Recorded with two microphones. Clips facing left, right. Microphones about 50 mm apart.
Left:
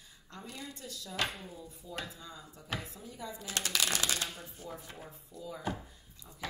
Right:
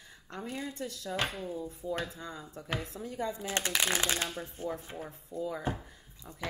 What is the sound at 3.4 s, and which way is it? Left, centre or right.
Speech, right.